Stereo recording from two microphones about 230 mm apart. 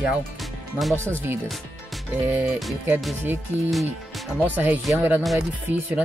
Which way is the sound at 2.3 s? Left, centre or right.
Centre.